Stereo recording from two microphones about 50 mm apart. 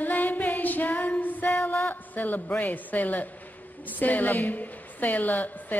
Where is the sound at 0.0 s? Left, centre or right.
Left.